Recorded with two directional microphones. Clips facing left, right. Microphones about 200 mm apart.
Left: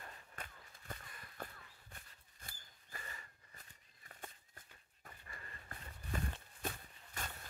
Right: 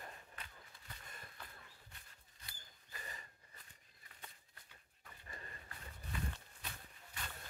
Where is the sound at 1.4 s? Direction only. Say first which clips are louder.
Left 11 dB; 50° left (ahead or behind).